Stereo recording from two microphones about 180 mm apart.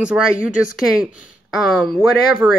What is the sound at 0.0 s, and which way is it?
Speech, 5° right (ahead or behind).